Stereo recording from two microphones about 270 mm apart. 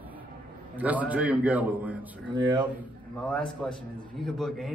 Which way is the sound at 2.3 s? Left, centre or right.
Centre.